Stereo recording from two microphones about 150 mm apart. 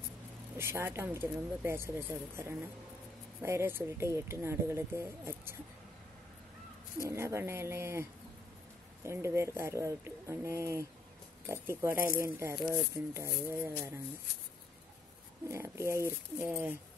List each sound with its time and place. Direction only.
0.6 s speech: 15° right (ahead or behind)
7.1 s speech: 20° right (ahead or behind)
15.4 s speech: 20° right (ahead or behind)